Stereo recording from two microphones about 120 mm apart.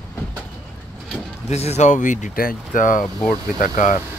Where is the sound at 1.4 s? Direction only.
65° left (ahead or behind); by 4.0 s 90° left.